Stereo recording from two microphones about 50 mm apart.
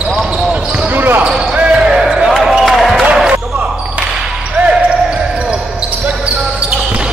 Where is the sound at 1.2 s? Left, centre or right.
Centre.